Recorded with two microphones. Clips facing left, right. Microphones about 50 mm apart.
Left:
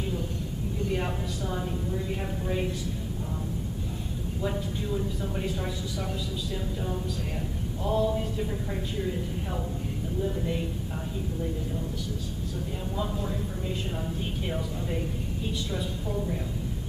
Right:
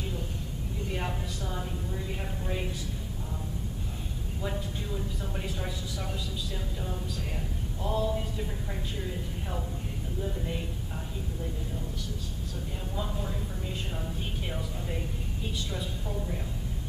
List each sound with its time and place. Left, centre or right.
0.9 s a woman's voice: centre
4.4 s speech: centre
7.8 s speech: centre
10.2 s speech: centre
12.9 s speech: centre